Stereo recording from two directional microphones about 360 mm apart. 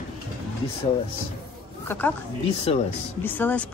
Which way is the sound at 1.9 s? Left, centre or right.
Centre.